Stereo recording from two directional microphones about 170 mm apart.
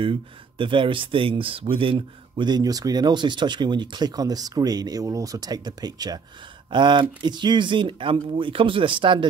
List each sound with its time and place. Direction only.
0.0 s speech: 30° right (ahead or behind)